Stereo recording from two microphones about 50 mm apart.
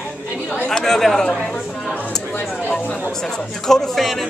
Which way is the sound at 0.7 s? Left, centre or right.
Centre.